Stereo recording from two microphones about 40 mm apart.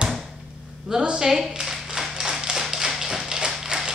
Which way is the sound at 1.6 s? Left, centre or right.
Centre.